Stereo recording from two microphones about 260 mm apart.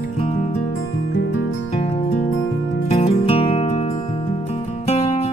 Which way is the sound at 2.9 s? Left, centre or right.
Left.